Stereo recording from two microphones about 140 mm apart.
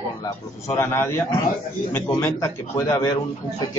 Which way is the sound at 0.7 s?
20° left (ahead or behind).